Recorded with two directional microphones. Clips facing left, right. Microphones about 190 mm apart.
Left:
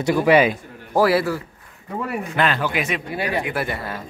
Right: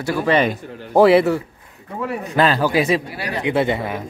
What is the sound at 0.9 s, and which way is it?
Speech, 25° right (ahead or behind).